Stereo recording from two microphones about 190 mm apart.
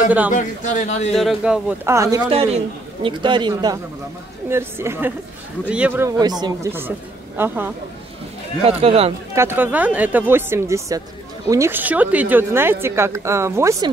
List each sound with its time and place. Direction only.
0.3 s a man's voice: 40° left (ahead or behind)
1.1 s speech: centre (ahead or behind); by 2.3 s 20° right (ahead or behind)
2.3 s a man's voice: 30° right (ahead or behind); by 7.7 s 10° right (ahead or behind)
8.6 s speech: 30° right (ahead or behind)
9.3 s speech: 10° right (ahead or behind)